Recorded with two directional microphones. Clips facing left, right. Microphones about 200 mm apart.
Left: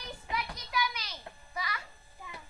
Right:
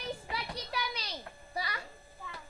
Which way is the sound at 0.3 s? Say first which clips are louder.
Left 2 dB; 35° right (ahead or behind).